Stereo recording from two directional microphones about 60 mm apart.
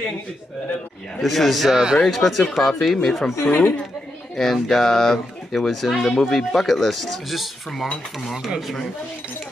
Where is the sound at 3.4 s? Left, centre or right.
Left.